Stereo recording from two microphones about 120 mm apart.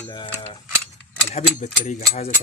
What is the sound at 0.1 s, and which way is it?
Speech, 40° left (ahead or behind).